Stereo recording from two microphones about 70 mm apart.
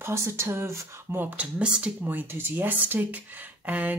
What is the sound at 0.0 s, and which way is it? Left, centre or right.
Speech, right.